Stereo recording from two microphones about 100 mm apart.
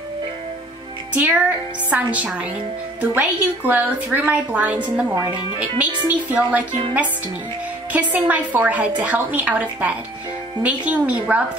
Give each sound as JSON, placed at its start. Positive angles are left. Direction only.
{"t": 1.1, "sound": "music", "side_deg": -15}
{"t": 1.9, "sound": "a woman's voice", "side_deg": -15}
{"t": 7.9, "sound": "a woman's voice", "side_deg": -15}